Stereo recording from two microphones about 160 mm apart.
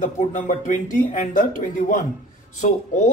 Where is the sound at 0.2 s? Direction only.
50° left (ahead or behind).